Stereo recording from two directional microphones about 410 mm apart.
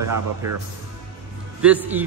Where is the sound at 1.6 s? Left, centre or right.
Centre.